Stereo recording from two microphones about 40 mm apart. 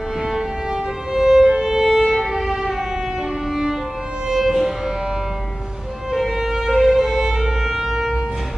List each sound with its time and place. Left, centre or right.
1.1 s music: centre
1.9 s violin: centre
2.1 s music: centre
4.3 s music: centre
6.1 s violin: centre